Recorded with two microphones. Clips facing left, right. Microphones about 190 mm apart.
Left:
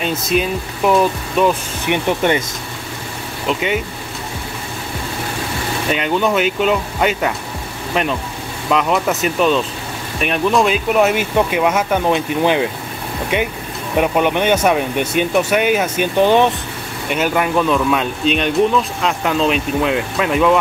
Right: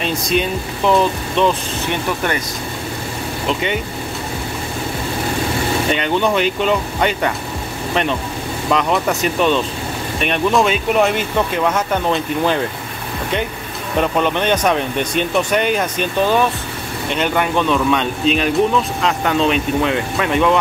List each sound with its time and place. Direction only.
0.0 s speech: 5° left (ahead or behind)
2.0 s speech: 20° left (ahead or behind)
3.4 s speech: 5° left (ahead or behind)
5.9 s speech: 5° left (ahead or behind)
13.9 s speech: 10° left (ahead or behind)